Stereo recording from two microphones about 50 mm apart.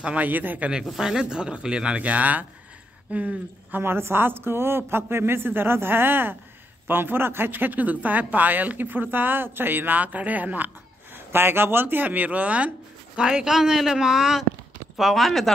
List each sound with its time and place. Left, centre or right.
0.0 s speech: right
0.8 s speech: centre; by 3.8 s right
3.8 s speech: right
11.1 s speech: right
13.4 s speech: centre